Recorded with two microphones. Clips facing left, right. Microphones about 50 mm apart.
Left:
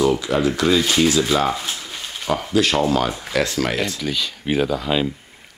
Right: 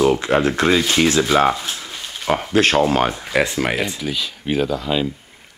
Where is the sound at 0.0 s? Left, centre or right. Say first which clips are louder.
Right 2 dB; right.